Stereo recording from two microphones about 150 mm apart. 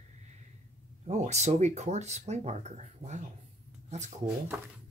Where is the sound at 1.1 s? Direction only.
50° right (ahead or behind).